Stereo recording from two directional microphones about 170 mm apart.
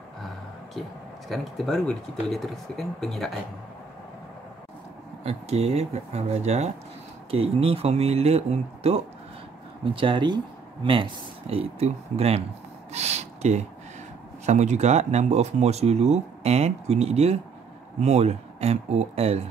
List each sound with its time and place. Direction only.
1.3 s speech: centre (ahead or behind)
5.2 s speech: 40° right (ahead or behind)
12.9 s a sound: 40° right (ahead or behind)
14.4 s speech: 45° right (ahead or behind)